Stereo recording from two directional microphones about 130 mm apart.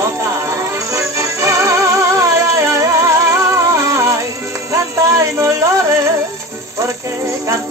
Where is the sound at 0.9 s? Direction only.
25° right (ahead or behind).